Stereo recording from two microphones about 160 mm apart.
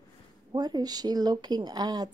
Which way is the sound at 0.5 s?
25° right (ahead or behind).